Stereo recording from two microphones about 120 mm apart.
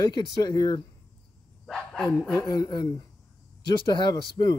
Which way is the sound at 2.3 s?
30° left (ahead or behind).